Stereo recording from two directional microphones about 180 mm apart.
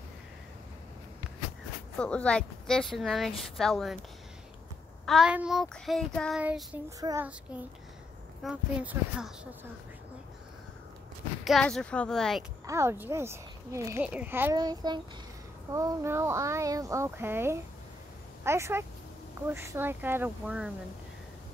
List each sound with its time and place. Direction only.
2.0 s a woman's voice: 5° left (ahead or behind)
5.0 s a woman's voice: centre (ahead or behind)
6.4 s speech: 5° right (ahead or behind)
7.0 s a child's voice: 20° right (ahead or behind)
8.5 s speech: 5° right (ahead or behind)
11.4 s a woman's voice: centre (ahead or behind)
12.6 s a woman's voice: 15° right (ahead or behind)